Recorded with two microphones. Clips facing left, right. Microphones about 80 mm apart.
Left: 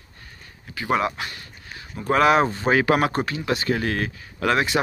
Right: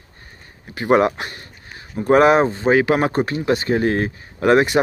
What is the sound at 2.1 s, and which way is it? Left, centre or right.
Speech, right.